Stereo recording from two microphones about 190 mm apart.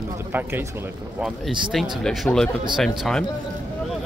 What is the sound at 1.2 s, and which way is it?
Speech, centre (ahead or behind).